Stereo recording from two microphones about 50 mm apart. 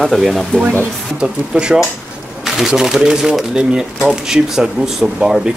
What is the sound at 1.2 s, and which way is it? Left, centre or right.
Speech, centre.